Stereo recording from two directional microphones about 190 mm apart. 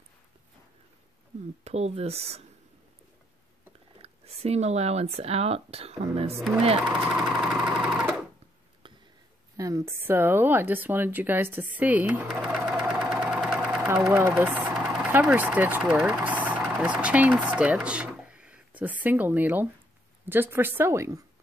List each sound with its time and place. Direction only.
1.6 s speech: 35° right (ahead or behind)
4.0 s speech: 35° right (ahead or behind)
6.8 s sewing machine: 5° right (ahead or behind)
9.6 s speech: 15° right (ahead or behind)